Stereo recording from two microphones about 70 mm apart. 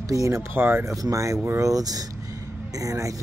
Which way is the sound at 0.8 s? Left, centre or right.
Right.